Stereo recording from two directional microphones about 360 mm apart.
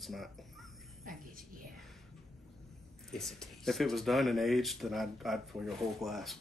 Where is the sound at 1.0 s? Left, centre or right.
Right.